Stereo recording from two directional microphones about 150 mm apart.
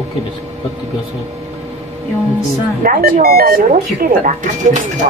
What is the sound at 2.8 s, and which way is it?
Speech, 80° right.